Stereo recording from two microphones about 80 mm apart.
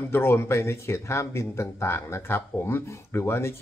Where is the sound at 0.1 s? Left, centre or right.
Left.